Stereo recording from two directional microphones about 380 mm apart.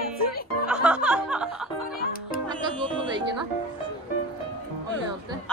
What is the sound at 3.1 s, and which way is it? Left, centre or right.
Music, centre.